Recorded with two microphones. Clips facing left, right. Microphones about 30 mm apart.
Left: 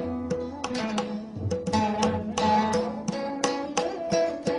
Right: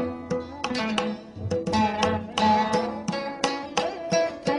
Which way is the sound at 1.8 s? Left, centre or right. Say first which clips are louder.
Right 1 dB; right.